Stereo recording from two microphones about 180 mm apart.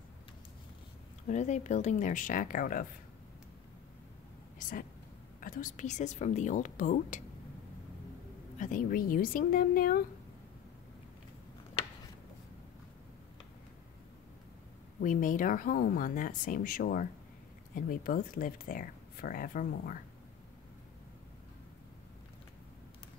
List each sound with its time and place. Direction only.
1.3 s speech: 40° left (ahead or behind)
4.6 s a sound: 50° left (ahead or behind)
5.4 s speech: 50° left (ahead or behind)
8.5 s speech: 50° left (ahead or behind)
15.0 s speech: 45° left (ahead or behind)